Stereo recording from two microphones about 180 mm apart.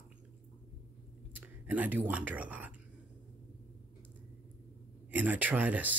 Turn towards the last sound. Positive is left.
turn(degrees=-10)  # may be behind; listen again after turning